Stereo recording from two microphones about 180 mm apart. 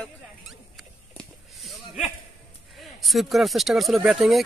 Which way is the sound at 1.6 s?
Centre (ahead or behind).